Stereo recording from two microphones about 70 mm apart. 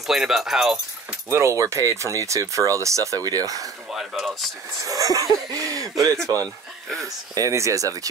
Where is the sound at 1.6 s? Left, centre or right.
Right.